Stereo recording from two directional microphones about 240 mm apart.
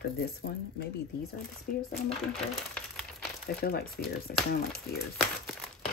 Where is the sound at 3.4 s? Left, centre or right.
Left.